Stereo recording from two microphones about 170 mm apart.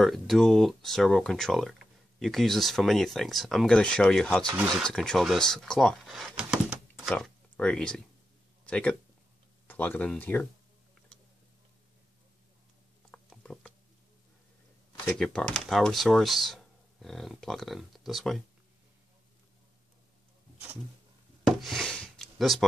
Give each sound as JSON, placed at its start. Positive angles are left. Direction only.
{"t": 0.0, "sound": "speech", "side_deg": 0}
{"t": 13.1, "sound": "a sound", "side_deg": 5}
{"t": 15.0, "sound": "speech", "side_deg": 5}
{"t": 21.5, "sound": "wood", "side_deg": 0}